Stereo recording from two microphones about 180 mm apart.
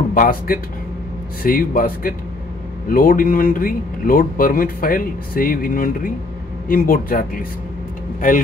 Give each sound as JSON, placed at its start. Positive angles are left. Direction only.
{"t": 0.1, "sound": "speech", "side_deg": 50}